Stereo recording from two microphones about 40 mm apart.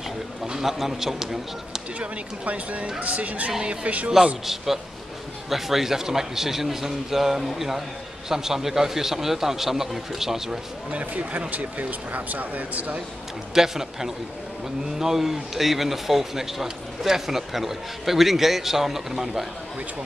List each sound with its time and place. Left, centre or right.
0.6 s speech: centre
2.0 s speech: right
5.5 s speech: centre
10.9 s speech: right
13.6 s speech: centre